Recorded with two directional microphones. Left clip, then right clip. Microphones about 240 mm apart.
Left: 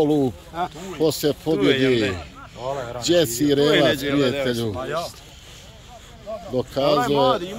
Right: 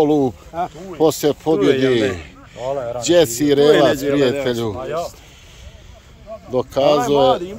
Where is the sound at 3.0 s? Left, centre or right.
Centre.